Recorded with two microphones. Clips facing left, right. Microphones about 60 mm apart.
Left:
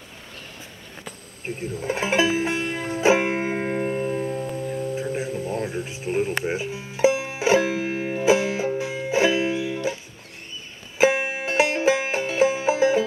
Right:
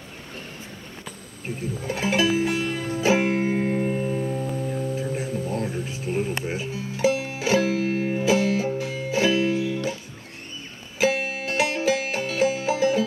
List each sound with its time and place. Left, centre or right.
1.9 s music: left
3.8 s music: centre
4.2 s music: centre
5.1 s music: left
11.0 s music: left